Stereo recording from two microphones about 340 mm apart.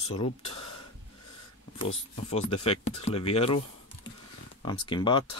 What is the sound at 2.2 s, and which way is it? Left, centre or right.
Speech, centre.